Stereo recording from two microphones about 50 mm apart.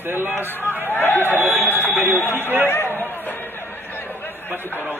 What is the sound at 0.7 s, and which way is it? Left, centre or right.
Speech, left.